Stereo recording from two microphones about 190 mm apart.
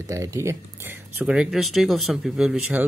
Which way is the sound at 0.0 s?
15° right (ahead or behind).